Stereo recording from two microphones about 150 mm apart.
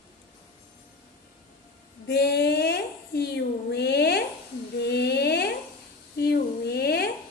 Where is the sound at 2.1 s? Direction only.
90° left.